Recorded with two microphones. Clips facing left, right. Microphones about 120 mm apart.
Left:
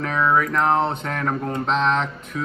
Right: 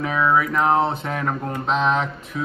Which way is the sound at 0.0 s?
5° right (ahead or behind).